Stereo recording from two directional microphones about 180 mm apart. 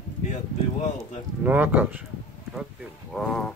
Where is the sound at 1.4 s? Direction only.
10° right (ahead or behind).